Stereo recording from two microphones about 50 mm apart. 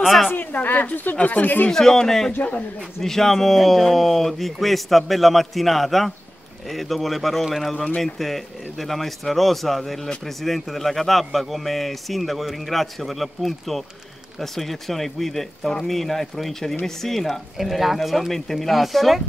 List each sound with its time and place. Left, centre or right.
0.0 s a man's voice: centre
0.3 s speech: left
1.7 s speech: centre
2.3 s speech: left
3.0 s a man's voice: centre